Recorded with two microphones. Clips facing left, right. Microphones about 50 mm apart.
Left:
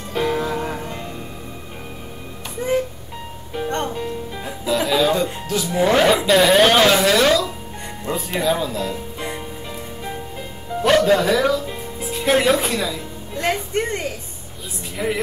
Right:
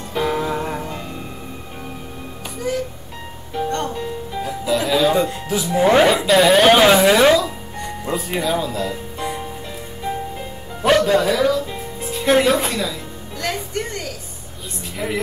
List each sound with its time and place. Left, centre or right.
0.1 s music: centre
2.6 s music: left
3.9 s music: centre
4.6 s music: centre
5.1 s speech: centre
8.0 s speech: centre
10.8 s music: centre
11.1 s speech: centre
13.4 s a woman's voice: left
15.0 s speech: centre